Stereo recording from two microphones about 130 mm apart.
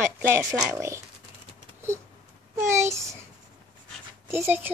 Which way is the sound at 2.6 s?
20° right (ahead or behind).